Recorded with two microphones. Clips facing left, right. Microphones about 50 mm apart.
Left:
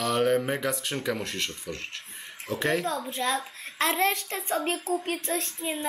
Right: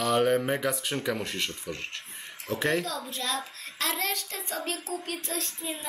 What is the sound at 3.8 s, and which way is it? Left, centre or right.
A woman's voice, left.